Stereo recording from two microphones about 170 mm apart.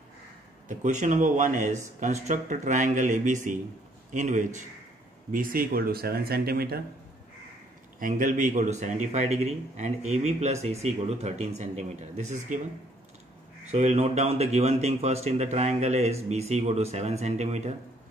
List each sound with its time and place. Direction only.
0.7 s speech: 45° right (ahead or behind); by 6.8 s 65° right (ahead or behind)
8.0 s a man's voice: 50° right (ahead or behind)
13.7 s a man's voice: 40° right (ahead or behind)